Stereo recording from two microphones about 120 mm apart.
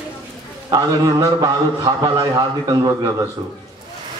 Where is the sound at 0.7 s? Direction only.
35° right (ahead or behind).